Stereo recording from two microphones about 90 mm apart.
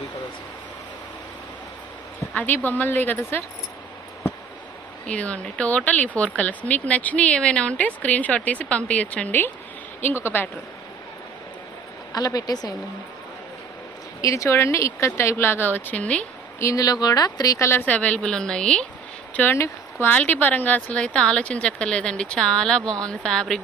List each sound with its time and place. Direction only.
2.3 s speech: 20° left (ahead or behind)
5.0 s speech: 15° left (ahead or behind)
12.1 s a woman's voice: 45° left (ahead or behind)
14.2 s speech: 35° left (ahead or behind); by 16.3 s 15° left (ahead or behind)
16.5 s speech: 35° left (ahead or behind)
17.8 s speech: 15° left (ahead or behind)
19.3 s speech: 25° left (ahead or behind); by 23.6 s 5° left (ahead or behind)